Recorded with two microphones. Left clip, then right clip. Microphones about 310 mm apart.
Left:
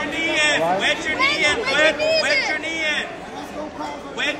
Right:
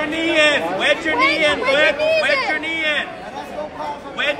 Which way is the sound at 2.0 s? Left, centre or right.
Centre.